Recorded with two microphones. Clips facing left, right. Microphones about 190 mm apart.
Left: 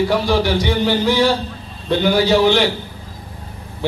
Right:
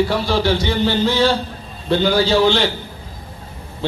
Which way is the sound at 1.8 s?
15° left (ahead or behind).